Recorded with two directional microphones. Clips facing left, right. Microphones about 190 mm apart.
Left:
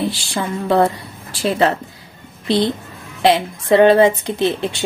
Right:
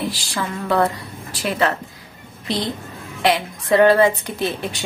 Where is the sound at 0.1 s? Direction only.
25° left (ahead or behind).